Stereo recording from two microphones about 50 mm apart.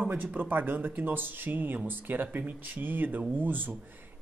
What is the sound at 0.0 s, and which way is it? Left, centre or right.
Speech, right.